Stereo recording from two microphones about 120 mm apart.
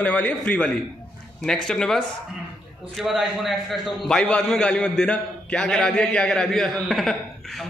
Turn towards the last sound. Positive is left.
turn(degrees=0)  # may be behind; listen again after turning